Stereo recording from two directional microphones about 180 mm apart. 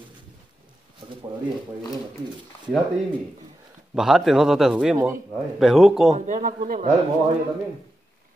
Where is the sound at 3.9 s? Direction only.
5° right (ahead or behind).